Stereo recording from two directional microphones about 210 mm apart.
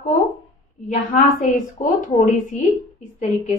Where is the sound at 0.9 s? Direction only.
30° left (ahead or behind).